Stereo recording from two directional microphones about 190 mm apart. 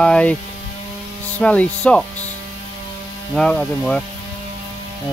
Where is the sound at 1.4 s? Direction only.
5° left (ahead or behind).